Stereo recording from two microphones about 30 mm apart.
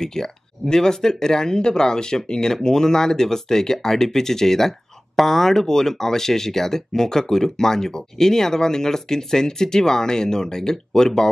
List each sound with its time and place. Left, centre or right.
0.0 s speech: centre